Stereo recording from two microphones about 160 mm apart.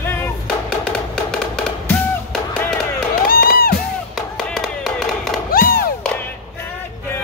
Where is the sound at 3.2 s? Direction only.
65° left (ahead or behind).